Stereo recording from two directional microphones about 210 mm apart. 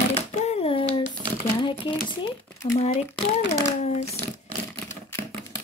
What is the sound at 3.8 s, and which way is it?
Speech, 30° left (ahead or behind).